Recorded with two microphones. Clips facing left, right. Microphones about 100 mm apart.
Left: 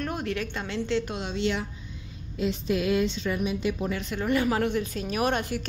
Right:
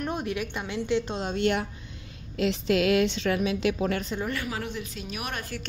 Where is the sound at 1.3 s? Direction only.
55° right (ahead or behind).